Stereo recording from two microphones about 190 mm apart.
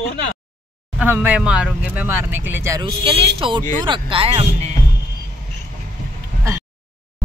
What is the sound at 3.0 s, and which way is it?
Speech, 30° right (ahead or behind).